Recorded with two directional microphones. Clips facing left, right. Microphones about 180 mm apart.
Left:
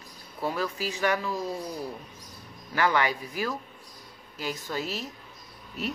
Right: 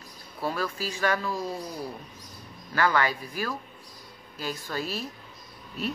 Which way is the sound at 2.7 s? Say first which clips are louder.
Even; 15° left (ahead or behind).